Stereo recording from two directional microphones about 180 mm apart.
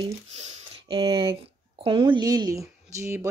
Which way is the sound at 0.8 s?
25° right (ahead or behind).